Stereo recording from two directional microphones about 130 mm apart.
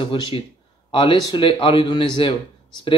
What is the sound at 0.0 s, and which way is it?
A man's voice, 40° left (ahead or behind).